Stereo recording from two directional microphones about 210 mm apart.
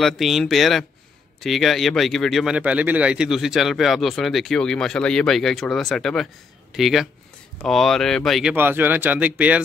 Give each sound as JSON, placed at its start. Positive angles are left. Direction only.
{"t": 0.0, "sound": "speech", "side_deg": 0}